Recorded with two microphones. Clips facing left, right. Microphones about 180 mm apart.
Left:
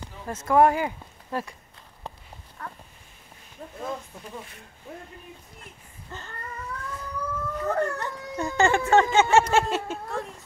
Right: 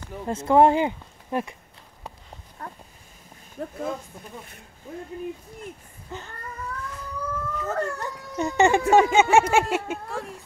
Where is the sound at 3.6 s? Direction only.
75° right (ahead or behind).